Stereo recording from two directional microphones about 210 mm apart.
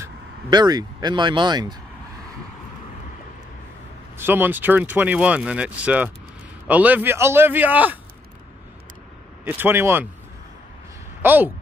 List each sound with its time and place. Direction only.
0.0 s speech: 20° right (ahead or behind)
4.2 s speech: 10° right (ahead or behind)
9.4 s speech: 10° right (ahead or behind)
11.2 s speech: 10° right (ahead or behind)